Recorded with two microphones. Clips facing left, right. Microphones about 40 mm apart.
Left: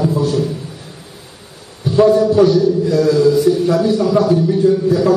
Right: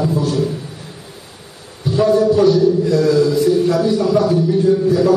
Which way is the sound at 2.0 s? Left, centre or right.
Centre.